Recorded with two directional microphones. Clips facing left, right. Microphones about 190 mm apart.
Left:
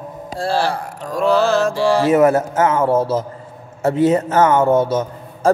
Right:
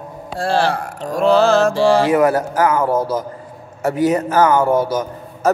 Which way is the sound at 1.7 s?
25° right (ahead or behind).